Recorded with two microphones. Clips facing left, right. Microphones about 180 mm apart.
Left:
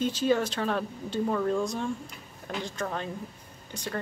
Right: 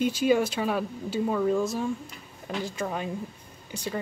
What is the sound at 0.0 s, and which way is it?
A woman's voice, 10° right (ahead or behind).